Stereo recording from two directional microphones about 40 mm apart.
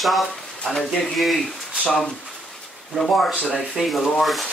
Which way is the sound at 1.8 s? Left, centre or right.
Centre.